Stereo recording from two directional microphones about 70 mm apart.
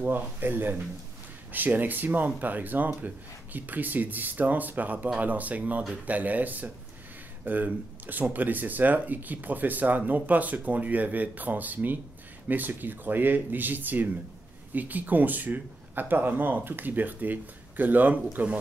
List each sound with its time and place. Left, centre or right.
0.0 s speech: right